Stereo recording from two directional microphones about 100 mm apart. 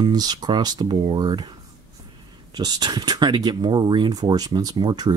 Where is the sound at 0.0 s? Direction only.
45° right (ahead or behind).